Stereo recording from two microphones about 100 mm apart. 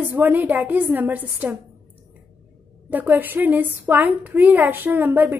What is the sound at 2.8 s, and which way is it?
A woman's voice, 20° right (ahead or behind).